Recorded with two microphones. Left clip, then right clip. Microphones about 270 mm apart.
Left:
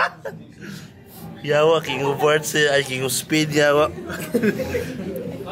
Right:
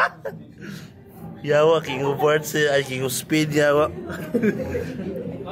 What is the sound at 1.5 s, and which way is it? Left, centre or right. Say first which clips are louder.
Speech: even; centre.